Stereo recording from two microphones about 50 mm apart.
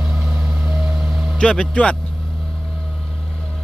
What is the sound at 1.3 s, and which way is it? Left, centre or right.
Speech, left.